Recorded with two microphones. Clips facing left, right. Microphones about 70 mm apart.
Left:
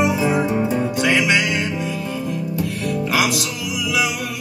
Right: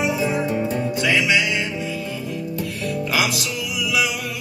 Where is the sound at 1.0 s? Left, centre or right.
Left.